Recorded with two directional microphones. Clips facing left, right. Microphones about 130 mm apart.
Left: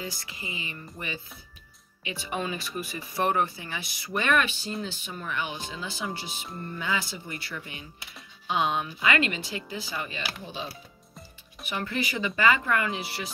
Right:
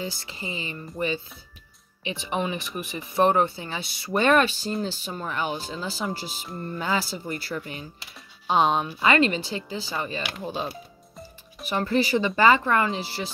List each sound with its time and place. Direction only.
0.0 s speech: 25° right (ahead or behind)
10.4 s speech: 45° right (ahead or behind)
11.6 s speech: 35° right (ahead or behind)